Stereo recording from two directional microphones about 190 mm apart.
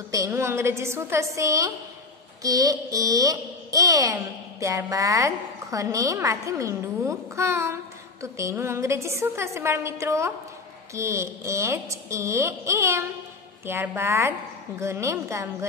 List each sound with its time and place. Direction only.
0.1 s a child's voice: 15° right (ahead or behind)